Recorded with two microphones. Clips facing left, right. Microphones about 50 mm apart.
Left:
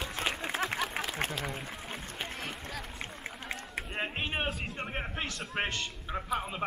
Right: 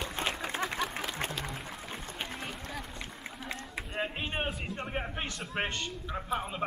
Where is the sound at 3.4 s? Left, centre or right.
Centre.